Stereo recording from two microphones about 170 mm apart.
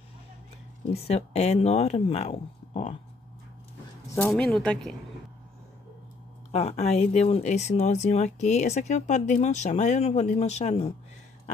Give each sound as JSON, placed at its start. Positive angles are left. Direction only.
{"t": 0.8, "sound": "speech", "side_deg": 35}
{"t": 4.3, "sound": "speech", "side_deg": 5}
{"t": 6.5, "sound": "speech", "side_deg": 40}